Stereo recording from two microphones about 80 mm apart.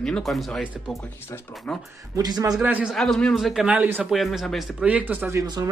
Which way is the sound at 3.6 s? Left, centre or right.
Centre.